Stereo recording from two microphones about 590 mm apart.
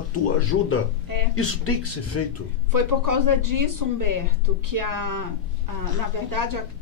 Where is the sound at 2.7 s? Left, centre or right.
Right.